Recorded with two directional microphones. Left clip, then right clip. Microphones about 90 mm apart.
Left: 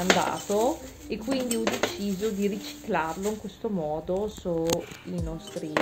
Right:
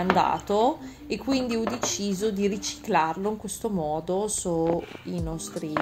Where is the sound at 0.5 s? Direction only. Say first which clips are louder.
Right 2 dB; 25° right (ahead or behind).